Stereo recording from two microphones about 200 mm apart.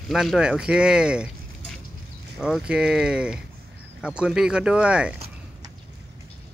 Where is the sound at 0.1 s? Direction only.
Centre (ahead or behind).